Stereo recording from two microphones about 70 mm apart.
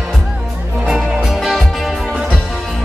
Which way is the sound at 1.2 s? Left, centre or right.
Centre.